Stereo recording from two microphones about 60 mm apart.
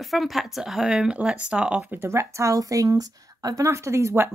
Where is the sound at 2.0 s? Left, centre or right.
Right.